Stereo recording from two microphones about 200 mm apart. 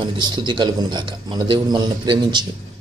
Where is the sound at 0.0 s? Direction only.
20° right (ahead or behind).